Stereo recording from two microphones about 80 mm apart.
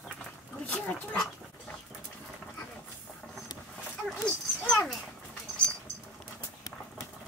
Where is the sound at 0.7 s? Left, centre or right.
Centre.